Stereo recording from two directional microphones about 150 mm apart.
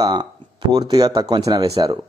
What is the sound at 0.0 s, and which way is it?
Speech, 30° right (ahead or behind).